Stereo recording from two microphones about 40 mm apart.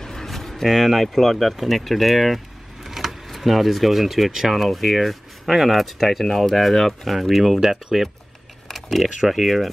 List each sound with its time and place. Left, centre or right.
0.0 s speech: centre